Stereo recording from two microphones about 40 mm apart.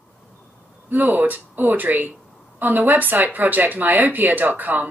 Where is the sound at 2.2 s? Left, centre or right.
Centre.